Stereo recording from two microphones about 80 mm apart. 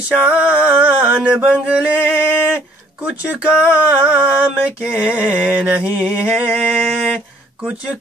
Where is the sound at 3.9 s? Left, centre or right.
Centre.